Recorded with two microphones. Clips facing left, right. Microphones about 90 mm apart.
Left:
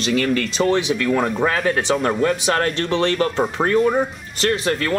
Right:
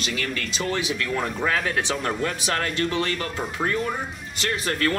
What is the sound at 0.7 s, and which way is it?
Speech, 30° left (ahead or behind).